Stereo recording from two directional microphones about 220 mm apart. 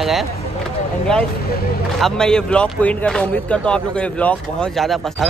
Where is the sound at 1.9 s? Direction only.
Centre (ahead or behind).